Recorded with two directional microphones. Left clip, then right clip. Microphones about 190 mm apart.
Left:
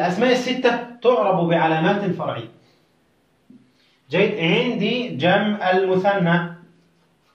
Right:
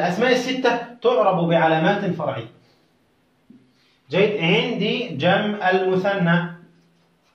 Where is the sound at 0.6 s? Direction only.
10° right (ahead or behind).